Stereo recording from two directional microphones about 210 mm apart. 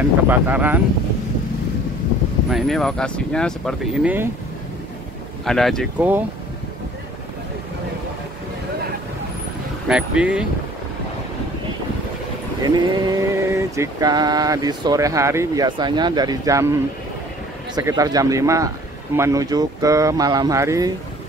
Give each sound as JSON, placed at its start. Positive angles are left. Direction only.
{"t": 0.3, "sound": "mantra", "side_deg": -10}
{"t": 2.5, "sound": "speech", "side_deg": 0}
{"t": 5.4, "sound": "speech", "side_deg": 0}
{"t": 9.8, "sound": "speech", "side_deg": -5}
{"t": 12.6, "sound": "mantra", "side_deg": -20}